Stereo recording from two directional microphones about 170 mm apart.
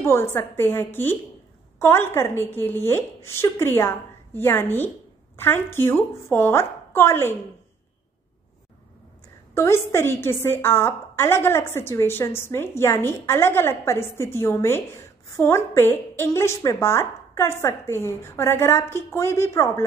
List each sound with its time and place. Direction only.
0.0 s a woman's voice: 15° left (ahead or behind)
9.5 s a woman's voice: 15° left (ahead or behind)